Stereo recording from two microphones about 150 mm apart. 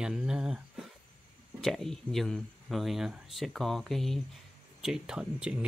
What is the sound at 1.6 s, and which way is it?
Speech, centre (ahead or behind).